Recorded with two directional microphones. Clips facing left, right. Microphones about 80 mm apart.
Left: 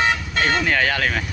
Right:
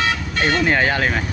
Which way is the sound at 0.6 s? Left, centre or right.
Right.